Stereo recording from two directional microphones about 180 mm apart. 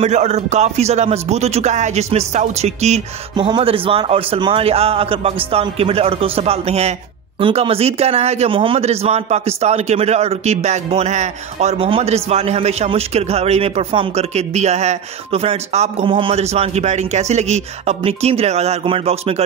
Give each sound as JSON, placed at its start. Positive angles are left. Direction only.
{"t": 0.0, "sound": "a man's voice", "side_deg": -35}
{"t": 3.3, "sound": "a man's voice", "side_deg": -25}